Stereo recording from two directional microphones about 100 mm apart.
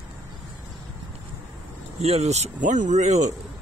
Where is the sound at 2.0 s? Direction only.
90° right.